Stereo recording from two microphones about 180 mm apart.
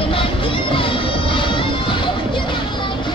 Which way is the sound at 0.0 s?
30° left (ahead or behind).